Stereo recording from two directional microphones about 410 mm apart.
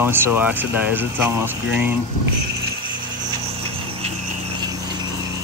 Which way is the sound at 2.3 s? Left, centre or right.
Right.